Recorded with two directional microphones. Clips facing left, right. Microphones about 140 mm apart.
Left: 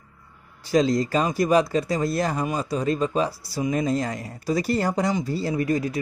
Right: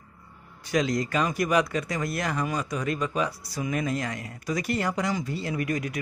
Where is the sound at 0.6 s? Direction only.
30° left (ahead or behind).